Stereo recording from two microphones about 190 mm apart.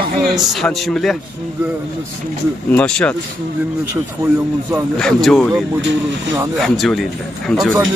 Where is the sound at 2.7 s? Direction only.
5° left (ahead or behind).